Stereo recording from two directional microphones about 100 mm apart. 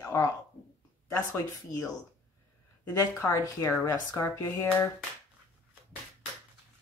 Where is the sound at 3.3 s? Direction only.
35° left (ahead or behind).